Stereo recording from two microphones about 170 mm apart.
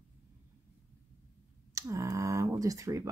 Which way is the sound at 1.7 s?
20° right (ahead or behind).